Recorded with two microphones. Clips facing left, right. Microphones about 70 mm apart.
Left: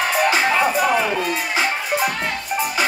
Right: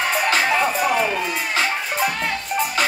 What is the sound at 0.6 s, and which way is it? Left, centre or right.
Music, left.